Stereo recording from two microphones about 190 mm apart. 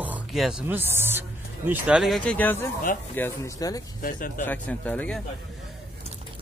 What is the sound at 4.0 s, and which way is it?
Speech, 45° left (ahead or behind).